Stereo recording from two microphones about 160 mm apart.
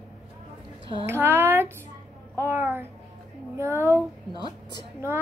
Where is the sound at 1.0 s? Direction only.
15° right (ahead or behind).